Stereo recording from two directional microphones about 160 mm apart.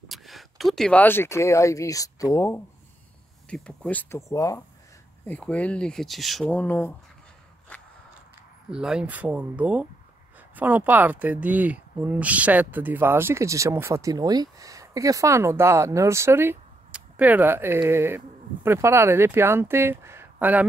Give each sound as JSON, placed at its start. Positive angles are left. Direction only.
{"t": 0.1, "sound": "speech", "side_deg": 0}
{"t": 3.4, "sound": "speech", "side_deg": 5}
{"t": 5.2, "sound": "speech", "side_deg": 10}
{"t": 7.7, "sound": "biting", "side_deg": 5}
{"t": 8.6, "sound": "speech", "side_deg": -5}